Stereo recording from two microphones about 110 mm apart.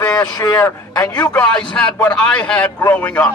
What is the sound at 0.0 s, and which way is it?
A man's voice, 35° left (ahead or behind).